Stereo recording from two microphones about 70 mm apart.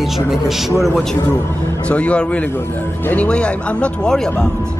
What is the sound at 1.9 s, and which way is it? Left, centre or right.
Speech, centre.